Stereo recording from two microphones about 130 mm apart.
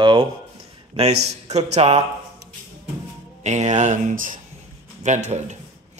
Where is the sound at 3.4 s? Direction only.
65° right (ahead or behind).